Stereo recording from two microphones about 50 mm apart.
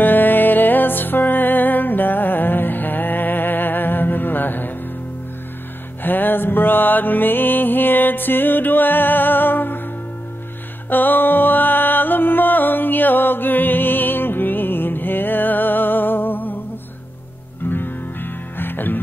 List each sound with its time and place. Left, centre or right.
0.0 s music: left
6.0 s music: left
10.9 s music: left
17.6 s music: left